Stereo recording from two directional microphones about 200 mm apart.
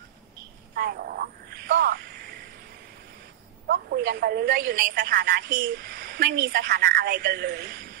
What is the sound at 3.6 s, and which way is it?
A woman's voice, 55° right (ahead or behind).